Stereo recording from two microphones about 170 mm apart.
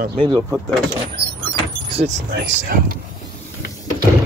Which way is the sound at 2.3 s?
60° right (ahead or behind).